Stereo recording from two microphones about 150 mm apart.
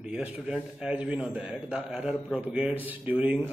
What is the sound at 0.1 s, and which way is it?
A man's voice, 5° right (ahead or behind).